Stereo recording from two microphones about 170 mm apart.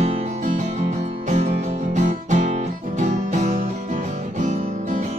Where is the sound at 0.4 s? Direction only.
40° right (ahead or behind).